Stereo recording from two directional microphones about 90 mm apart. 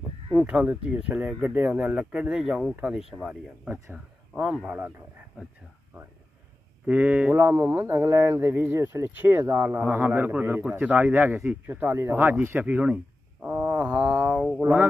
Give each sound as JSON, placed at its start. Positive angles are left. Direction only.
{"t": 0.4, "sound": "speech", "side_deg": -15}
{"t": 6.9, "sound": "speech", "side_deg": -15}